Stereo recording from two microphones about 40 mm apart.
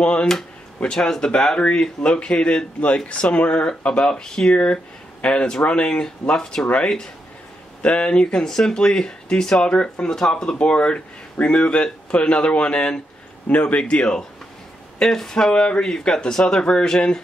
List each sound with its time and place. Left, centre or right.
0.0 s speech: left
0.9 s speech: centre
10.1 s speech: centre
15.0 s speech: centre
15.5 s speech: left